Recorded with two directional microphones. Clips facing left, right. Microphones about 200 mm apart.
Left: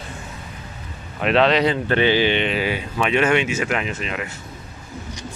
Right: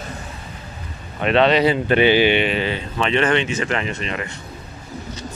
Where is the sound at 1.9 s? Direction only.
15° right (ahead or behind).